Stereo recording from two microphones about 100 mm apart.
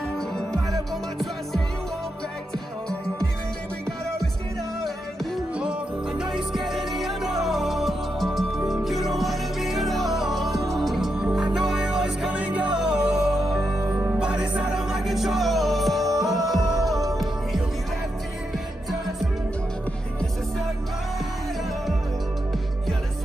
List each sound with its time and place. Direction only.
4.8 s music: centre (ahead or behind)
5.6 s music: 10° right (ahead or behind)
8.5 s music: 25° right (ahead or behind)
8.8 s music: centre (ahead or behind)
13.9 s music: 15° right (ahead or behind)